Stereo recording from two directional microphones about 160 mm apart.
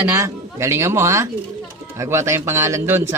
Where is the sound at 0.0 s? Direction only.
20° right (ahead or behind).